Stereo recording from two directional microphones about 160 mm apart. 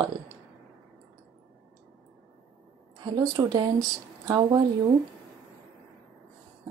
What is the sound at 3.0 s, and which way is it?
Speech, 25° right (ahead or behind).